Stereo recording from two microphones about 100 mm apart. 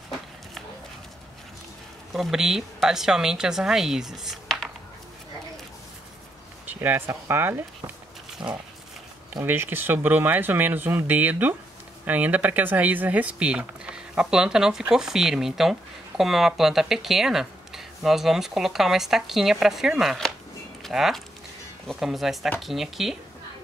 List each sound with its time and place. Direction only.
2.1 s speech: 5° right (ahead or behind)
6.7 s speech: 20° right (ahead or behind)
8.4 s speech: 10° right (ahead or behind)
9.3 s speech: 20° right (ahead or behind); by 23.1 s centre (ahead or behind)